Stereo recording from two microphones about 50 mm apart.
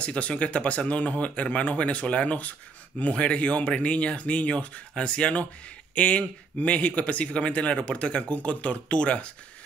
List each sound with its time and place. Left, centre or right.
0.0 s speech: left